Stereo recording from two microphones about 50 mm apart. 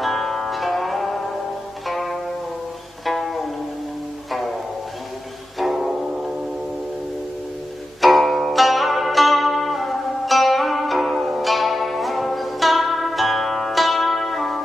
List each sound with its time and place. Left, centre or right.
0.0 s music: centre
5.6 s music: centre
8.0 s music: centre